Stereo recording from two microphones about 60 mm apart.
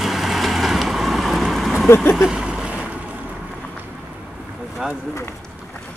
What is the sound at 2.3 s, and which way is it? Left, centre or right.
Boat, centre.